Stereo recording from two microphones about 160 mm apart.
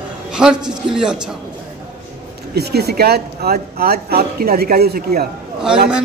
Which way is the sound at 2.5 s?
90° right.